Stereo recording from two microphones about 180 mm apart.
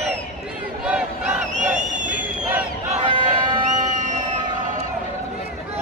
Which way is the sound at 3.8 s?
45° right (ahead or behind).